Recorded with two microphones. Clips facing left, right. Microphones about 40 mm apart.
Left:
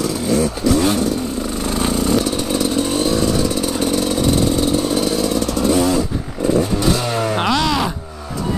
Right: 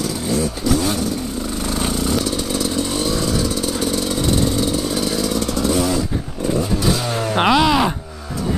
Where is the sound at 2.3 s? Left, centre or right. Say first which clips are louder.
Left 3 dB; left.